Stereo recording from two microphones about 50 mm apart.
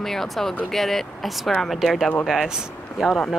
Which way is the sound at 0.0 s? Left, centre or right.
Centre.